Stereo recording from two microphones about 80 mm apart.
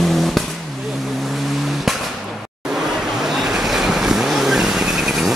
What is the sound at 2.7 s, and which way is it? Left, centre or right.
Vehicle, centre.